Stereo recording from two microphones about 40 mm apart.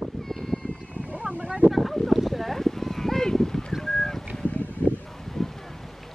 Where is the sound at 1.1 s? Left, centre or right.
Right.